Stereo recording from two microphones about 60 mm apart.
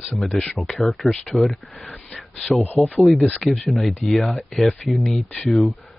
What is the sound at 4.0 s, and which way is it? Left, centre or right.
Speech, centre.